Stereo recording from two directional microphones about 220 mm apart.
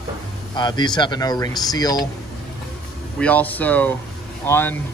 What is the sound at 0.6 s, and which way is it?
Speech, 20° left (ahead or behind).